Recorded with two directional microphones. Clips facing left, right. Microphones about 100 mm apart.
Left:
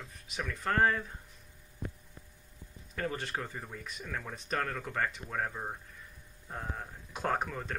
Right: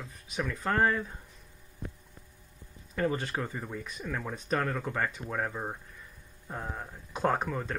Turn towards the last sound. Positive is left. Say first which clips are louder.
# right 4 dB
turn(degrees=-15)  # may be behind; listen again after turning